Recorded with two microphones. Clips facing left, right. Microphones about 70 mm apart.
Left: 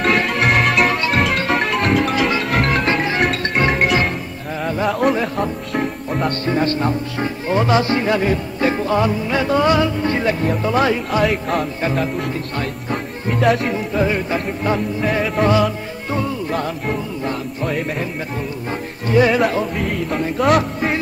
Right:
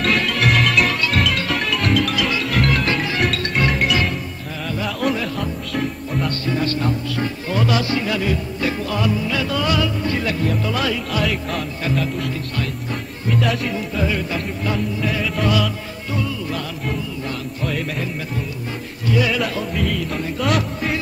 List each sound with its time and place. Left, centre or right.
0.0 s music: centre
1.1 s music: left
2.4 s music: left
5.1 s music: left
11.2 s music: left
11.8 s music: left
12.9 s music: left
14.1 s music: left
16.5 s music: left
19.0 s music: left
19.8 s music: left